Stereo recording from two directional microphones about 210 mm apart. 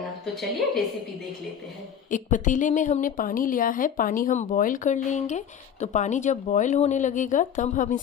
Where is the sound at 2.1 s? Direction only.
35° left (ahead or behind).